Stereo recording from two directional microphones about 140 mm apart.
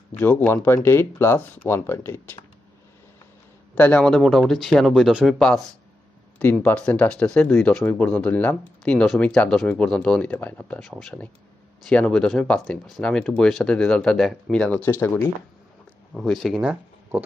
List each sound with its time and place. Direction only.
0.1 s speech: 10° left (ahead or behind)
3.7 s speech: 10° left (ahead or behind)
16.2 s speech: centre (ahead or behind)